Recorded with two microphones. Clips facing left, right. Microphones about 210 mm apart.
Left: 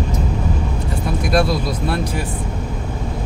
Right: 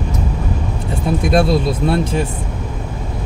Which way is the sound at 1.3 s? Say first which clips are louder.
Right 3 dB; 25° right (ahead or behind).